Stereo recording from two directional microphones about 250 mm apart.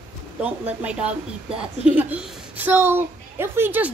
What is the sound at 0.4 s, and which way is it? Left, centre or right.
A woman's voice, centre.